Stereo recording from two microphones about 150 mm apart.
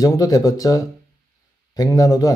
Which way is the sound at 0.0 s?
25° left (ahead or behind).